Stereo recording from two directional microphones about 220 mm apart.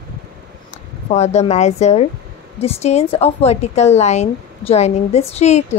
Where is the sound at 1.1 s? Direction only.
30° left (ahead or behind).